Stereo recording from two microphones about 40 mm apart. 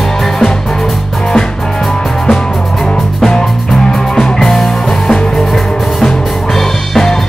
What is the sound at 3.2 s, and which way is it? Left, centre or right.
Music, centre.